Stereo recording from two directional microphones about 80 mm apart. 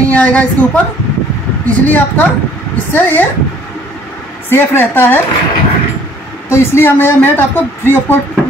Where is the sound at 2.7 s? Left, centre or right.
Left.